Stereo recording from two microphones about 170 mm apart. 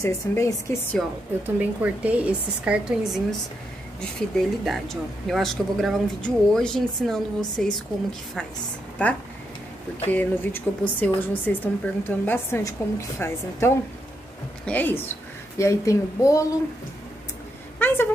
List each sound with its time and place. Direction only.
0.0 s a woman's voice: 15° left (ahead or behind)
1.4 s a woman's voice: 10° right (ahead or behind)
9.0 s a woman's voice: 10° left (ahead or behind)
14.7 s a woman's voice: 10° left (ahead or behind)
17.7 s a sound: 10° left (ahead or behind)